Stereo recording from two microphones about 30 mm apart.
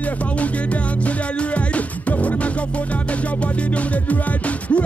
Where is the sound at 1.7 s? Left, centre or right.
Left.